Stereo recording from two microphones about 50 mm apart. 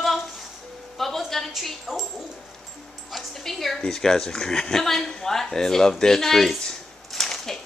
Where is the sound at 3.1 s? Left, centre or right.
Centre.